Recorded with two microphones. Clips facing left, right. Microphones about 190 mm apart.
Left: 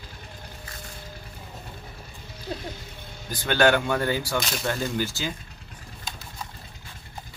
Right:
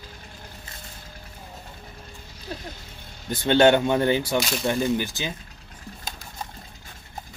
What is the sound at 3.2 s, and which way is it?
Speech, 25° right (ahead or behind).